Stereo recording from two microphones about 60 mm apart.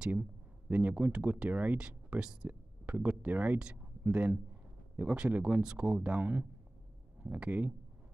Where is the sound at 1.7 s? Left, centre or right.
Centre.